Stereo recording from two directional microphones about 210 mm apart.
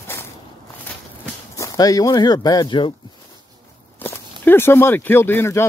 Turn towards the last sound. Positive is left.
turn(degrees=10)  # may be behind; listen again after turning